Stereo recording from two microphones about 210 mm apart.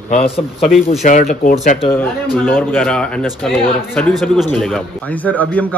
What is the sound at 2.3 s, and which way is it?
Speech, 5° left (ahead or behind).